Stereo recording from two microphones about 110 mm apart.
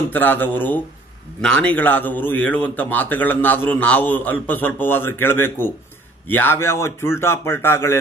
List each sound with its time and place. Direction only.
0.1 s a man's voice: 15° left (ahead or behind)